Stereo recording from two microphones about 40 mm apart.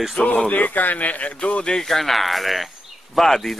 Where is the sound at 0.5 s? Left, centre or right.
Left.